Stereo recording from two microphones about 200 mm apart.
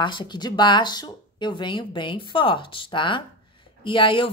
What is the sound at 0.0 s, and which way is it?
Speech, 25° left (ahead or behind).